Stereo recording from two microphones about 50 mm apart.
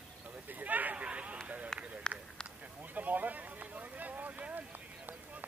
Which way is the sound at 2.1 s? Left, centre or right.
Centre.